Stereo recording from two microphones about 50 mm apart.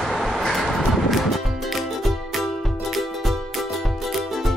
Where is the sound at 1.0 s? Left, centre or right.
Centre.